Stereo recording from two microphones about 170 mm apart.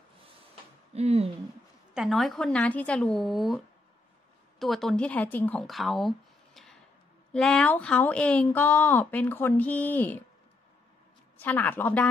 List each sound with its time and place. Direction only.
0.9 s speech: 40° right (ahead or behind)
2.0 s speech: centre (ahead or behind)
11.3 s speech: 10° left (ahead or behind)